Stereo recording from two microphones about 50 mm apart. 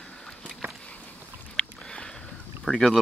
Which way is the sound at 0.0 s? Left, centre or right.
Centre.